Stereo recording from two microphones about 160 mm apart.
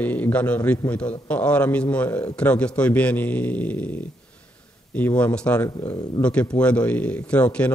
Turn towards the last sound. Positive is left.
turn(degrees=5)  # may be behind; listen again after turning